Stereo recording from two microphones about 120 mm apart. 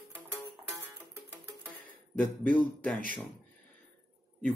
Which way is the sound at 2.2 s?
15° left (ahead or behind).